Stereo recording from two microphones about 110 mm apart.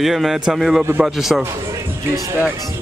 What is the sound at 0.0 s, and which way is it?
Speech, centre (ahead or behind).